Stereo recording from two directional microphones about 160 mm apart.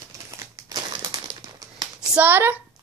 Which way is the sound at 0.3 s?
20° right (ahead or behind).